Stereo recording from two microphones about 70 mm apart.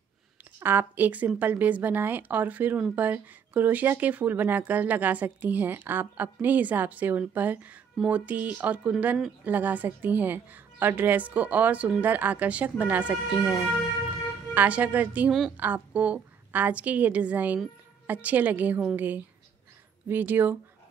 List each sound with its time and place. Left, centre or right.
0.6 s speech: right